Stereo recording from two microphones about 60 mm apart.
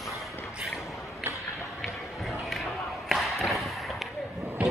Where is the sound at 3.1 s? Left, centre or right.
Centre.